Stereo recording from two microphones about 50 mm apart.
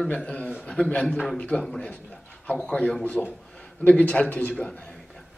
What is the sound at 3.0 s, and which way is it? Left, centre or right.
A man's voice, left.